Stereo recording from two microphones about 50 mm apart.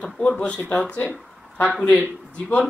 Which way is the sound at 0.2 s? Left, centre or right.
Left.